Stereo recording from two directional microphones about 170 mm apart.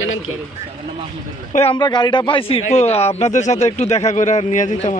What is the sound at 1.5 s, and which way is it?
Speech, 35° left (ahead or behind).